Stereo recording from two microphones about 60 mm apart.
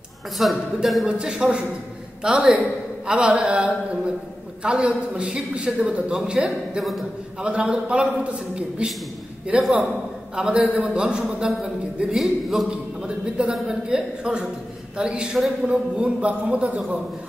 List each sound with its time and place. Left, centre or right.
0.4 s a man's voice: centre
6.8 s a man's voice: centre
7.4 s a man's voice: centre
12.6 s a man's voice: centre